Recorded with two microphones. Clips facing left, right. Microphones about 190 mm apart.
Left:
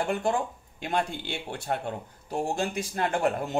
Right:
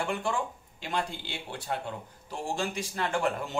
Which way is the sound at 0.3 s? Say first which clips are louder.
Left 4 dB; 50° left (ahead or behind).